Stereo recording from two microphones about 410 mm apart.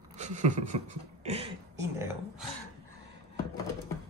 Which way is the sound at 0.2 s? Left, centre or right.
Centre.